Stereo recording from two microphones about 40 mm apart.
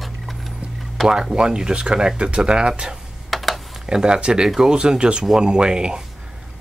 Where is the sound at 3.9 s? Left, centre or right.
Centre.